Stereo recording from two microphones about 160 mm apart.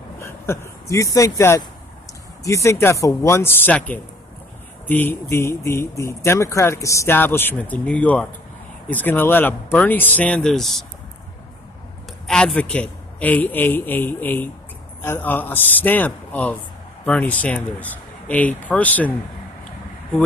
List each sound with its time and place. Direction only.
0.2 s speech: 20° left (ahead or behind); by 10.9 s centre (ahead or behind)
12.3 s speech: 5° left (ahead or behind)